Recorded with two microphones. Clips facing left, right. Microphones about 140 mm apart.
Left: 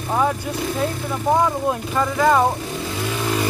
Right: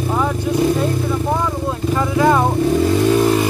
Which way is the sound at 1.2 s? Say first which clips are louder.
Left 2 dB; 15° left (ahead or behind).